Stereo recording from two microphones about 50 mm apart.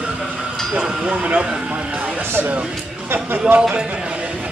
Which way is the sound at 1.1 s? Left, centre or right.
Right.